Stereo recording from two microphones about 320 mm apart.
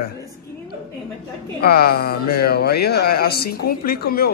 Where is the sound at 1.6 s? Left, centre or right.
Left.